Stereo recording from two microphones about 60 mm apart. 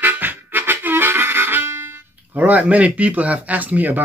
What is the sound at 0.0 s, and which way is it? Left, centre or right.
Harmonica, right.